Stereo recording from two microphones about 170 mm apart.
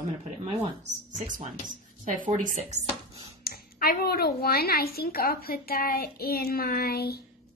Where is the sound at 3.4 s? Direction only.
65° left (ahead or behind).